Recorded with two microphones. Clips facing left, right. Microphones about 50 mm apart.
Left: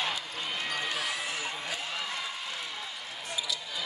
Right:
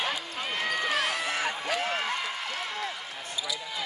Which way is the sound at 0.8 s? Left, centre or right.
Right.